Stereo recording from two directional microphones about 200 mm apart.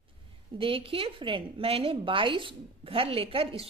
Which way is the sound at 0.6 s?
25° right (ahead or behind).